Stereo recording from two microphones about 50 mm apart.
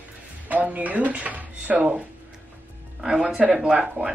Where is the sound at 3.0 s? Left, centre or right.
Centre.